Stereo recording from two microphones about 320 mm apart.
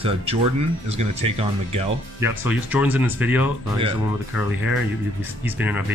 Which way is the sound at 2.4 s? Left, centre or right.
Centre.